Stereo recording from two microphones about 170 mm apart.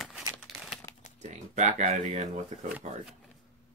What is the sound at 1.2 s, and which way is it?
Speech, 45° right (ahead or behind).